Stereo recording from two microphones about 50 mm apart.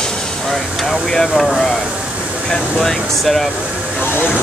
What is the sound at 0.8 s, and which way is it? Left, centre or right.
Speech, centre.